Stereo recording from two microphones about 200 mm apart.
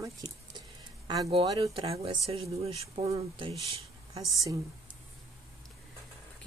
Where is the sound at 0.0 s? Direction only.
20° right (ahead or behind).